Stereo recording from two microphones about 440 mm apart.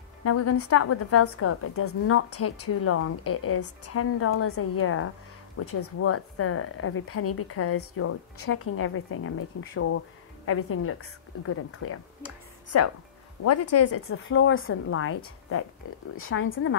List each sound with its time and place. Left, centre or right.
0.2 s a woman's voice: left